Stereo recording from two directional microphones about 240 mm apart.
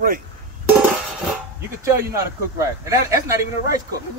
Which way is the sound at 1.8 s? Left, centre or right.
Centre.